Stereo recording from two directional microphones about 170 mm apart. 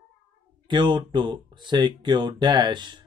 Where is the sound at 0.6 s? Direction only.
30° right (ahead or behind).